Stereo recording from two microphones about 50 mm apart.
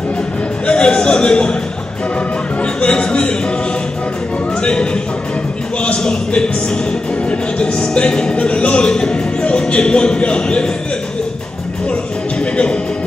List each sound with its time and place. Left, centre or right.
0.7 s a sound: centre
2.6 s speech: centre
5.8 s speech: centre